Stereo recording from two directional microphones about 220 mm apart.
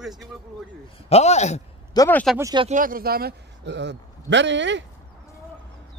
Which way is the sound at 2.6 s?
40° right (ahead or behind).